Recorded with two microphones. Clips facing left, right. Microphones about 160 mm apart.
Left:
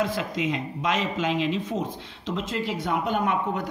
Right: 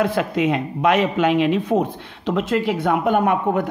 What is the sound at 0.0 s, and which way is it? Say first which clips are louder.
Speech: right 7 dB; 65° right (ahead or behind).